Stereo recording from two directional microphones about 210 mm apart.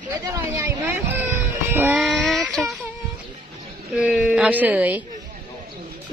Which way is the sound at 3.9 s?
5° right (ahead or behind).